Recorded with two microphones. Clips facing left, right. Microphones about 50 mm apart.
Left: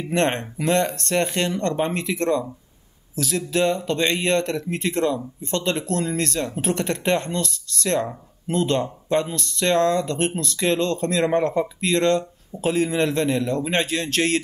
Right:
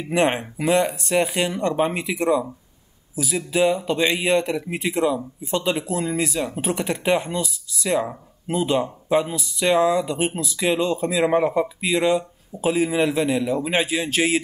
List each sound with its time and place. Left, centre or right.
0.1 s speech: centre